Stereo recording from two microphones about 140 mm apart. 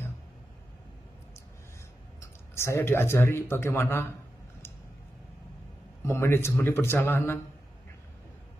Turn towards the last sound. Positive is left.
turn(degrees=15)  # may be behind; listen again after turning